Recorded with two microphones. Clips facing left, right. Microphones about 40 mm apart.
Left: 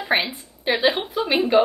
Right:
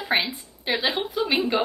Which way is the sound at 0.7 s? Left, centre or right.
Left.